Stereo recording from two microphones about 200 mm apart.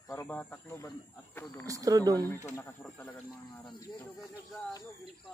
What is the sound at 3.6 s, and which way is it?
Speech, 20° left (ahead or behind).